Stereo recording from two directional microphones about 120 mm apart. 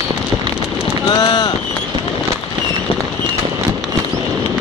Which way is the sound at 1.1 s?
35° left (ahead or behind).